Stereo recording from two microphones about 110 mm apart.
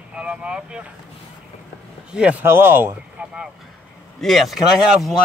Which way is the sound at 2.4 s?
20° right (ahead or behind).